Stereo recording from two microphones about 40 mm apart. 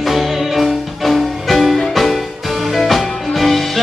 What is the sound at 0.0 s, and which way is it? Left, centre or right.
Music, centre.